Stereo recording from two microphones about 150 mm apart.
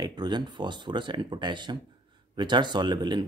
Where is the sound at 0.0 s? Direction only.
30° right (ahead or behind).